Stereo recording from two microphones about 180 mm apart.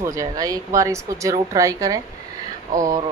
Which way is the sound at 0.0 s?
15° right (ahead or behind).